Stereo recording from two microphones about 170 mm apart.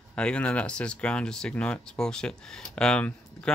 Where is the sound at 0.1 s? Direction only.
5° left (ahead or behind).